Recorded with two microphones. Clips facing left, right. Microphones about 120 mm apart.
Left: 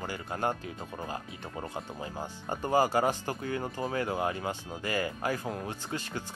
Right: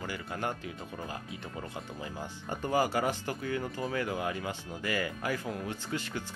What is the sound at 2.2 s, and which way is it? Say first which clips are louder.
Speech: left 2 dB; 40° left (ahead or behind).